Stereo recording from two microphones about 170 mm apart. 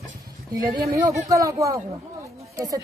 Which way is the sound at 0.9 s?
20° right (ahead or behind).